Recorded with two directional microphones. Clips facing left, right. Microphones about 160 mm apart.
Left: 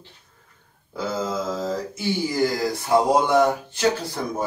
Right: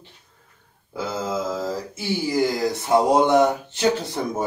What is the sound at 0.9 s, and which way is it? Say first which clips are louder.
Mantra: even; 5° right (ahead or behind).